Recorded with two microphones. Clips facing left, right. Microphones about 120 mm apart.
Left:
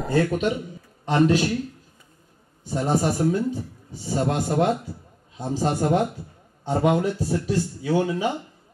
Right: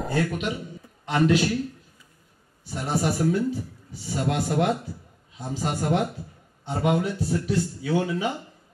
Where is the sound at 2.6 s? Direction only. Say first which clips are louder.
Left 4 dB; 30° left (ahead or behind).